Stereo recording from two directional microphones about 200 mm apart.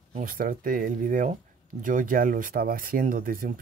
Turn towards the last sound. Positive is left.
turn(degrees=-45)  # may be behind; listen again after turning